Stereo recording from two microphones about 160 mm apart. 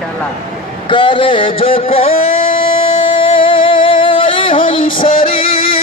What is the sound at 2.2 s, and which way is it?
Music, 35° left (ahead or behind).